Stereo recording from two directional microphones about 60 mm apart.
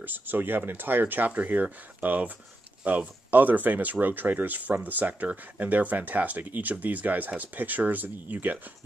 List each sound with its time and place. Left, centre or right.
0.0 s speech: right